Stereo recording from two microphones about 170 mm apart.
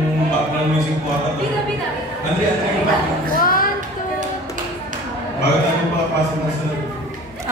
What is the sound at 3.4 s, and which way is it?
Music, 55° left (ahead or behind).